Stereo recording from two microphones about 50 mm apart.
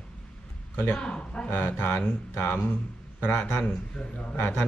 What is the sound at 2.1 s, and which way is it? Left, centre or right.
A man's voice, left.